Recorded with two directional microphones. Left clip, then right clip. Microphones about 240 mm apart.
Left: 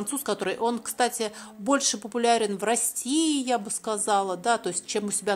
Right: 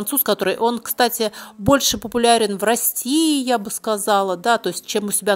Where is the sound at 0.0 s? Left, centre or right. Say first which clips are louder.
Right 9 dB; right.